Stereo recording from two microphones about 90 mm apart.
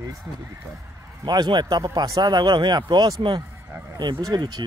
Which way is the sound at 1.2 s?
55° right (ahead or behind).